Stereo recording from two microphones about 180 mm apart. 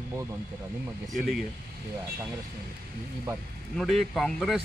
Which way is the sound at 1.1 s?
Centre (ahead or behind).